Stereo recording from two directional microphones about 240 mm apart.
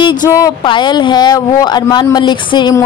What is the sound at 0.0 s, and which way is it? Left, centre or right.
A woman's voice, centre.